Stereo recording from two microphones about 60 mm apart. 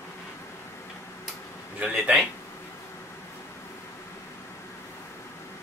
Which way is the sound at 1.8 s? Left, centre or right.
Centre.